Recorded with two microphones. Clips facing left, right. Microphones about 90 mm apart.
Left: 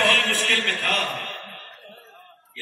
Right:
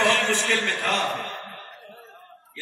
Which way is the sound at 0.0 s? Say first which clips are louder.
Right 1 dB; 20° right (ahead or behind).